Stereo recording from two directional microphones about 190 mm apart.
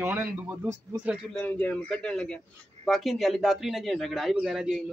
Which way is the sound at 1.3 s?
10° left (ahead or behind).